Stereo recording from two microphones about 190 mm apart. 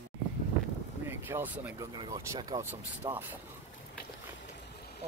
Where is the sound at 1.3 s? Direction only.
10° right (ahead or behind).